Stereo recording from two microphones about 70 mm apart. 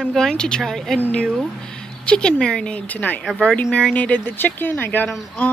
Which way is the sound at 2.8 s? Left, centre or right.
Left.